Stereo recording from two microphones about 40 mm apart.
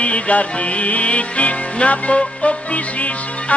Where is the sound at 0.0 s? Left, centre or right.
Left.